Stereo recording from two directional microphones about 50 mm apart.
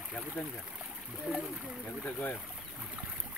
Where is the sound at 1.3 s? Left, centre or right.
Centre.